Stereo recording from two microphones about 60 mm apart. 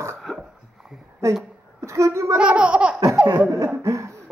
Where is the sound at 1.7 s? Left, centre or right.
Right.